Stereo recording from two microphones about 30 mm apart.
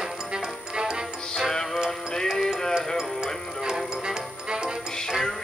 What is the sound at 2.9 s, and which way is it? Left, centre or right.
Music, right.